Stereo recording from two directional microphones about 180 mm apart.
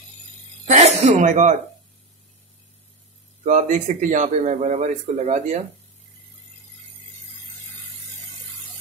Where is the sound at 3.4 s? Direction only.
45° right (ahead or behind).